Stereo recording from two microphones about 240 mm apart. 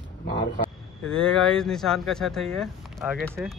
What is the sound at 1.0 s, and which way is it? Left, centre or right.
Speech, centre.